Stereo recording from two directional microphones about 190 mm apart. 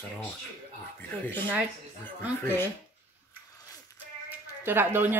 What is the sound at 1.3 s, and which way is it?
Speech, 10° left (ahead or behind).